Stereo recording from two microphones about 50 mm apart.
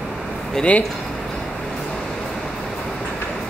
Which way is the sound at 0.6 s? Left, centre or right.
Left.